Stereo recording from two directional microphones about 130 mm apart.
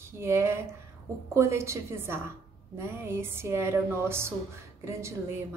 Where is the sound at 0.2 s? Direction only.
20° right (ahead or behind).